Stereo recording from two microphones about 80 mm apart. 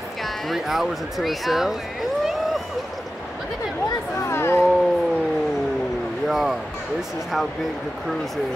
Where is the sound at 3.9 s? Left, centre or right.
Left.